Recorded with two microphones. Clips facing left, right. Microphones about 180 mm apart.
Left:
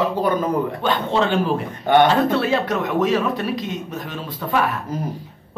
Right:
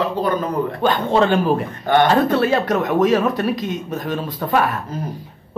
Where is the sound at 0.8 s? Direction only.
45° right (ahead or behind).